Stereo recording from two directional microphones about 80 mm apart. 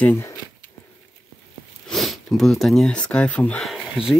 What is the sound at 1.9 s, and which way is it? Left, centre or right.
Speech, centre.